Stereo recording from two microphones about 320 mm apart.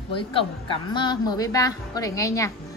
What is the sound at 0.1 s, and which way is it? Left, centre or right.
A woman's voice, centre.